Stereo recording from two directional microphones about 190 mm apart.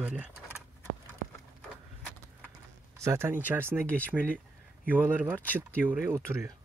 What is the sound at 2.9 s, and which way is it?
Speech, 15° right (ahead or behind).